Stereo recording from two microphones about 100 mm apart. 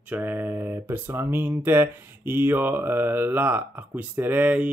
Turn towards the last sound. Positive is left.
turn(degrees=-15)  # may be behind; listen again after turning